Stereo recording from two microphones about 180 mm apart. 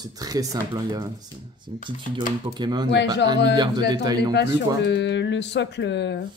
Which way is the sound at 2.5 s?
25° right (ahead or behind).